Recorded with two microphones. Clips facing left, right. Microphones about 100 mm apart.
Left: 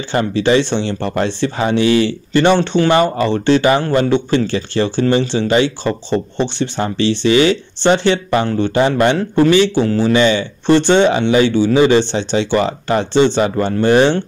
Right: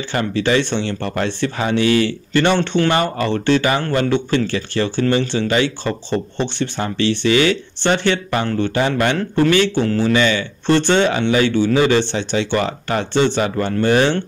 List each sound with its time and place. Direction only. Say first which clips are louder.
0.1 s speech: left 4 dB; 25° left (ahead or behind)
8.7 s speech: left 6 dB; 30° left (ahead or behind)
9.4 s speech: left 3 dB; 15° left (ahead or behind)
10.1 s speech: left 4 dB; 25° left (ahead or behind)